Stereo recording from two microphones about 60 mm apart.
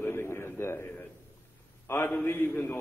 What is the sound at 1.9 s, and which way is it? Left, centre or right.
Speech, left.